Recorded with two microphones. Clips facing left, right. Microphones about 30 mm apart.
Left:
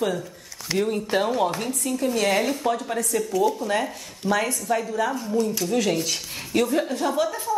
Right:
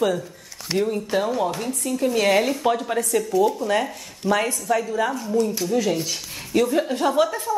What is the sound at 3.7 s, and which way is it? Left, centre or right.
A woman's voice, centre.